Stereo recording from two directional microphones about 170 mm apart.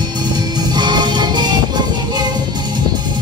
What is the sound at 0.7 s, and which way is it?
Music, 25° right (ahead or behind).